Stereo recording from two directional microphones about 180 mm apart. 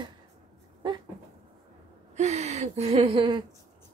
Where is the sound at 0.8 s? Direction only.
25° right (ahead or behind).